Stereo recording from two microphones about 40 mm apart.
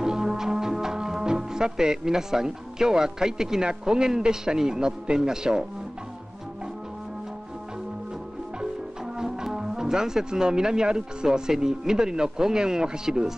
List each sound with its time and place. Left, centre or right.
0.0 s speech: centre
9.1 s speech: centre